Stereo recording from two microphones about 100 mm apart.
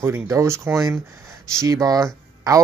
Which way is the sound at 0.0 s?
30° right (ahead or behind).